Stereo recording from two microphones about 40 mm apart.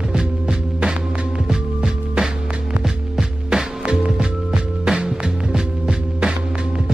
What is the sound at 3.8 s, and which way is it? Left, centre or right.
Music, right.